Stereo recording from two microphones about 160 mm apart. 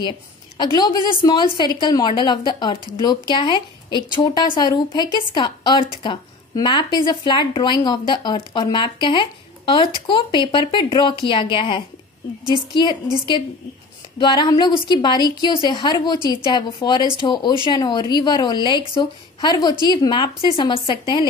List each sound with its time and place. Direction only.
0.6 s a woman's voice: 25° left (ahead or behind)
14.1 s a woman's voice: 30° left (ahead or behind)